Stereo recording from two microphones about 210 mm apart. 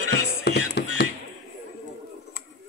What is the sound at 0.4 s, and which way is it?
Music, 50° left (ahead or behind).